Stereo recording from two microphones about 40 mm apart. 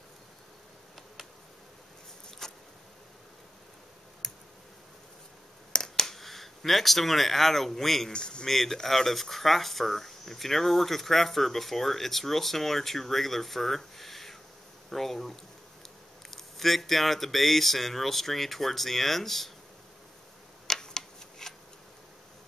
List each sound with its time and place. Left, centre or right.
2.4 s a sound: centre
4.2 s tick: centre
5.7 s a sound: centre
8.1 s speech: left
8.5 s speech: centre
20.6 s shuffling cards: centre